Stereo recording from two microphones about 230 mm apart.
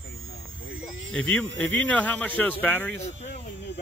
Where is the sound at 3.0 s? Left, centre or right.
Left.